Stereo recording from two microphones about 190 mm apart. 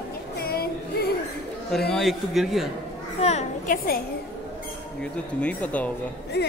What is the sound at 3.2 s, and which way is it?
Children playing, 35° left (ahead or behind).